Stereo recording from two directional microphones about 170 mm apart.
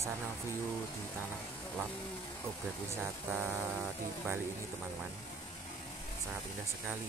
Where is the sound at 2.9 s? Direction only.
15° right (ahead or behind).